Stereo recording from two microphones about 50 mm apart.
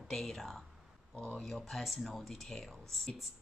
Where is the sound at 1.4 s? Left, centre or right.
Centre.